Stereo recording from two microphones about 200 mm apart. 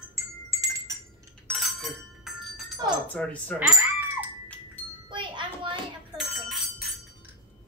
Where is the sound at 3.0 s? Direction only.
5° left (ahead or behind).